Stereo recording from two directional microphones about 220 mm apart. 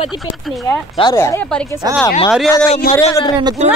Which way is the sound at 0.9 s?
15° left (ahead or behind).